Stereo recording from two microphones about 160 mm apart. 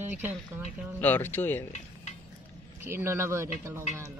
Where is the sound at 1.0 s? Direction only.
10° left (ahead or behind).